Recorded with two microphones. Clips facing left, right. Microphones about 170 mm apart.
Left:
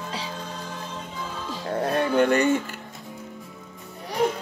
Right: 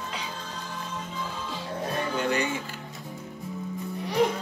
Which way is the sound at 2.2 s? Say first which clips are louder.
Left 9 dB; 55° left (ahead or behind).